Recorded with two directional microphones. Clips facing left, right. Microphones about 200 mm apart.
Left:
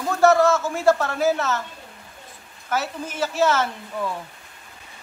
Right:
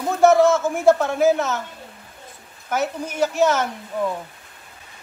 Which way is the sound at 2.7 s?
15° right (ahead or behind).